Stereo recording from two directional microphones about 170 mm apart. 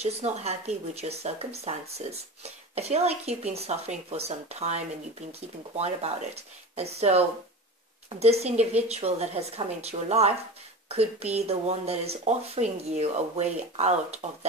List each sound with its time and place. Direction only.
0.0 s speech: 40° right (ahead or behind)